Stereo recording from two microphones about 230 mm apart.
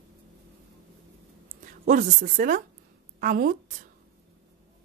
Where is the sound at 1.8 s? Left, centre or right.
Right.